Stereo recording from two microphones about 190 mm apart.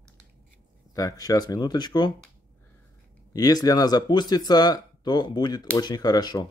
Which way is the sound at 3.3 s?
20° left (ahead or behind).